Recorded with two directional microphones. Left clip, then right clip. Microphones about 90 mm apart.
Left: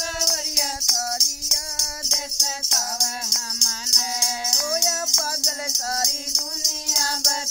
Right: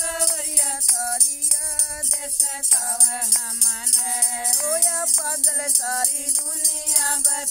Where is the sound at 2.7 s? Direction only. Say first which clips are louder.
Even; 35° left (ahead or behind).